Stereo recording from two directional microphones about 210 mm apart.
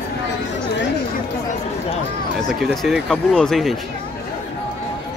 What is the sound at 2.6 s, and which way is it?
Speech, centre (ahead or behind).